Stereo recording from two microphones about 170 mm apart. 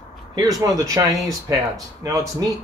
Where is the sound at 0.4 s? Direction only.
20° right (ahead or behind).